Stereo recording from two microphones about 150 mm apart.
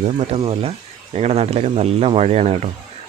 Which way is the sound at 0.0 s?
45° right (ahead or behind).